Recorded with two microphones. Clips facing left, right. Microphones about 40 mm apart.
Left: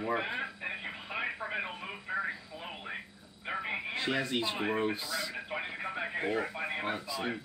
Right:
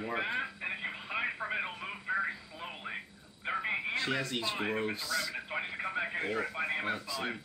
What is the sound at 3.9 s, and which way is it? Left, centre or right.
Speech, centre.